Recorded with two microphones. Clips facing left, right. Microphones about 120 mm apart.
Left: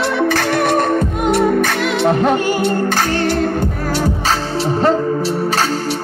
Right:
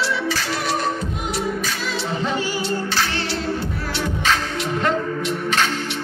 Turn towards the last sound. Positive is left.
turn(degrees=35)  # may be behind; listen again after turning